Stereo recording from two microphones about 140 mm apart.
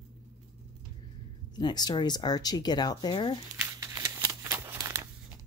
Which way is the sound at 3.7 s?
25° right (ahead or behind).